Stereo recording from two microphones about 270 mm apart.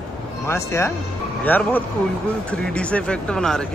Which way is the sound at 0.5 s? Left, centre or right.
Centre.